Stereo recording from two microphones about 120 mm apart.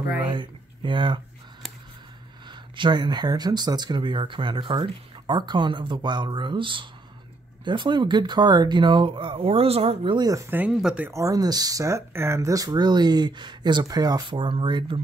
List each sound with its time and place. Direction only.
0.3 s speech: 40° right (ahead or behind)
2.4 s speech: 40° right (ahead or behind)
10.1 s speech: 30° right (ahead or behind)
10.7 s speech: 5° right (ahead or behind)
11.1 s speech: 25° right (ahead or behind); by 15.0 s 40° right (ahead or behind)